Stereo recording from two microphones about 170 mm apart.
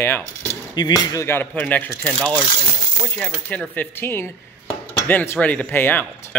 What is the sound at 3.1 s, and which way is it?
Speech, 5° left (ahead or behind).